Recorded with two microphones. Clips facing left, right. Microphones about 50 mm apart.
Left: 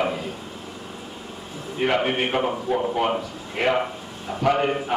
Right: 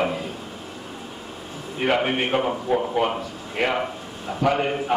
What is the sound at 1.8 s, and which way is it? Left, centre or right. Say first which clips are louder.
A man's voice: even; centre.